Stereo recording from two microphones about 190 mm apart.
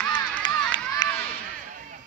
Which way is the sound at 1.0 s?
20° left (ahead or behind).